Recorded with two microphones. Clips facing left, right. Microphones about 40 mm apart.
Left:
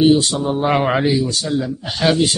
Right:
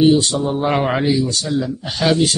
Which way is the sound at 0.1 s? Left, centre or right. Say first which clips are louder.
Even; centre.